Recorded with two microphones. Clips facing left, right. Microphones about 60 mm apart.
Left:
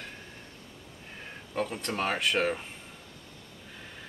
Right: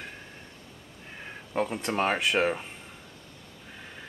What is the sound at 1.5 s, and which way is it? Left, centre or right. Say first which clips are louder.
Speech: right 3 dB; centre.